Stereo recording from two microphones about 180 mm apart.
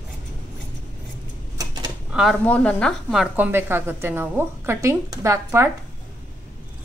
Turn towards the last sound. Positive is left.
turn(degrees=-15)  # may be behind; listen again after turning